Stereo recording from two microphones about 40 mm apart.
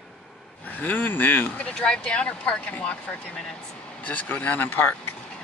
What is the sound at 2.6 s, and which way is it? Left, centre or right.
Speech, left.